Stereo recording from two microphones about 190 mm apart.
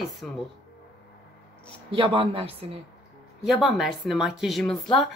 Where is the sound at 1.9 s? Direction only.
25° right (ahead or behind).